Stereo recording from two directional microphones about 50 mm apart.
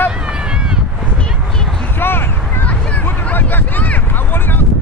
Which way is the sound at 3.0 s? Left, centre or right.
Left.